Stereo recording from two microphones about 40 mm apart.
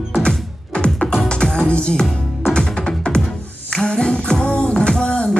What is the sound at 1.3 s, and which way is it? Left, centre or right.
Music, centre.